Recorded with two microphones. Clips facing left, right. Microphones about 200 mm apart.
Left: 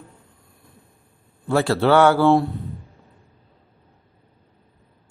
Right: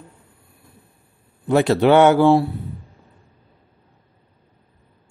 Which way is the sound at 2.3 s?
Centre (ahead or behind).